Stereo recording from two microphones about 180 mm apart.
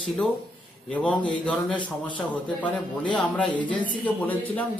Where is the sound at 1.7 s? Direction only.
25° left (ahead or behind).